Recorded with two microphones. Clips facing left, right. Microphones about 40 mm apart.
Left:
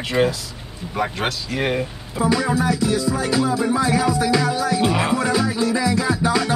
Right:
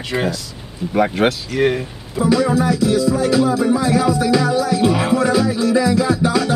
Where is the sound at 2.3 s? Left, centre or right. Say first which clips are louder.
Right 4 dB; centre.